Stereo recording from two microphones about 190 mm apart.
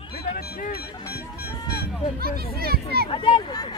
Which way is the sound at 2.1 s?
55° right (ahead or behind).